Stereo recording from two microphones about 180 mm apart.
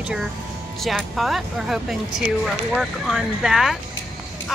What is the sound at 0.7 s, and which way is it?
Speech, centre (ahead or behind).